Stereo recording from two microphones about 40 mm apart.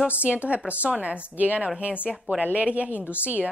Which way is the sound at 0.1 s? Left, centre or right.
Right.